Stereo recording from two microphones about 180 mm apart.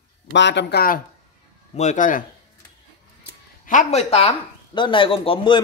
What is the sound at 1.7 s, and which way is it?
Speech, 40° left (ahead or behind).